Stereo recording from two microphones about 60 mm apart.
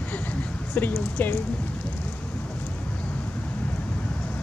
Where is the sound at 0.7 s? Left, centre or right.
Left.